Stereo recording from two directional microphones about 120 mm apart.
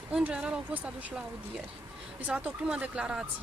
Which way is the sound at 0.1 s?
5° right (ahead or behind).